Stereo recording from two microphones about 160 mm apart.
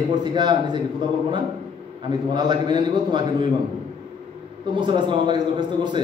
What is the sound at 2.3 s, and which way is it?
A man's voice, 25° right (ahead or behind).